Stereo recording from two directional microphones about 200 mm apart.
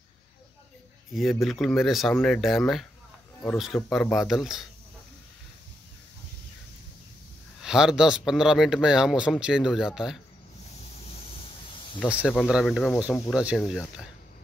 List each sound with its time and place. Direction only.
1.1 s speech: centre (ahead or behind)
7.6 s speech: 5° right (ahead or behind)
11.2 s a sound: 25° left (ahead or behind)
12.1 s speech: centre (ahead or behind)